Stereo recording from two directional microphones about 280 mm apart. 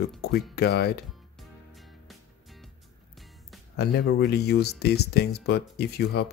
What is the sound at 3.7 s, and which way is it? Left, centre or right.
Speech, left.